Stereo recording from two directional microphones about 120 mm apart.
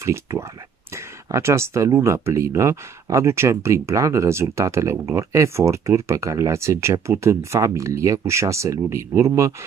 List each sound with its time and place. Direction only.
0.0 s speech: 25° right (ahead or behind)